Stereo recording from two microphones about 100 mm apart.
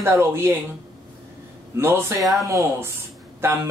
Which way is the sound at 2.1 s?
Centre (ahead or behind).